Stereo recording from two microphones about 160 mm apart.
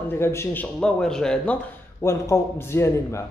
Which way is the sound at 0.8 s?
5° left (ahead or behind).